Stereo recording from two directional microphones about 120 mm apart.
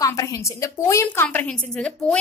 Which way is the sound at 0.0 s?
30° left (ahead or behind).